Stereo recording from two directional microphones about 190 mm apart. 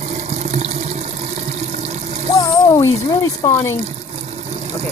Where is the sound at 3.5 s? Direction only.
15° left (ahead or behind).